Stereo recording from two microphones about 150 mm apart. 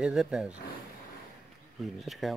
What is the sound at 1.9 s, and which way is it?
Speech, centre (ahead or behind).